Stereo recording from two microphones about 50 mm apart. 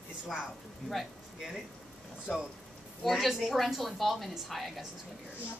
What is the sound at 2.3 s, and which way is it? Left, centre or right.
Speech, left.